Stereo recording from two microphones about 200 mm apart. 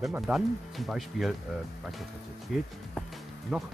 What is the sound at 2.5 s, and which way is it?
Speech, centre (ahead or behind).